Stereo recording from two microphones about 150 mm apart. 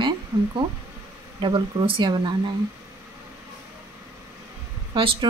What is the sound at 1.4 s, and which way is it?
Speech, 35° right (ahead or behind).